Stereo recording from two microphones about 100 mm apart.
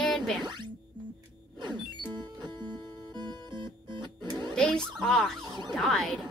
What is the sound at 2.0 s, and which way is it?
Music, 50° right (ahead or behind).